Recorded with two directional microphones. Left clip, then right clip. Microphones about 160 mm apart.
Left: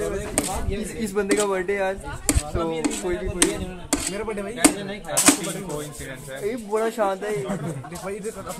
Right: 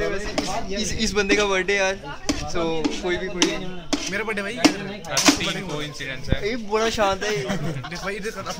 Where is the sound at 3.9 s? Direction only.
5° left (ahead or behind).